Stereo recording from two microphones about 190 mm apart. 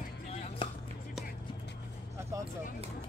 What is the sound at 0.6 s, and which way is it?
Music, 25° left (ahead or behind).